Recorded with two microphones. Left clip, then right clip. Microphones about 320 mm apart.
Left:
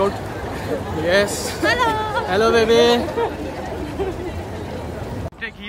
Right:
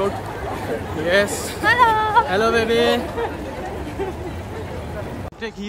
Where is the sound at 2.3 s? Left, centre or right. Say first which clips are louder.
Left 3 dB; centre.